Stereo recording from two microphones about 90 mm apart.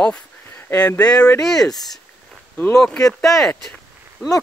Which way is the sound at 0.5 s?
25° left (ahead or behind).